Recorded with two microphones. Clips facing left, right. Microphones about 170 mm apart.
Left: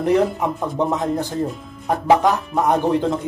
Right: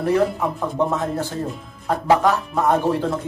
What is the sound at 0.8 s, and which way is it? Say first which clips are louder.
Speech: left 2 dB; 20° left (ahead or behind).